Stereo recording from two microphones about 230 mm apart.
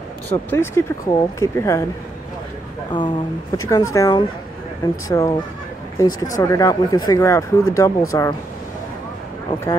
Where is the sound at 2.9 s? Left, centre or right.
Centre.